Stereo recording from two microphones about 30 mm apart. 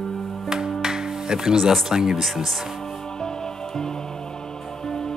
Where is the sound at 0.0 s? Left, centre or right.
Centre.